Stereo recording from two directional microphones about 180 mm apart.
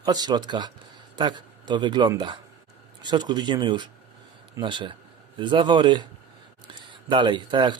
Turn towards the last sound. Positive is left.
turn(degrees=-25)  # may be behind; listen again after turning